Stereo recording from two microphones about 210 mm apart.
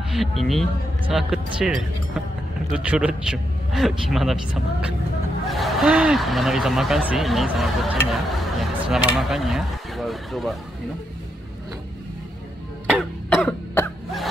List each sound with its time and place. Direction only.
0.1 s speech: centre (ahead or behind)
5.5 s speech: centre (ahead or behind)
13.3 s cough: 5° left (ahead or behind)